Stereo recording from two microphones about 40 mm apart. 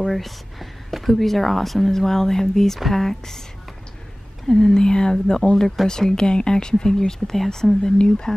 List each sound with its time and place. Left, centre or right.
0.1 s speech: centre
4.5 s speech: centre